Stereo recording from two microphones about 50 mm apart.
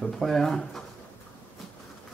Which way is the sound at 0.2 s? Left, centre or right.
Centre.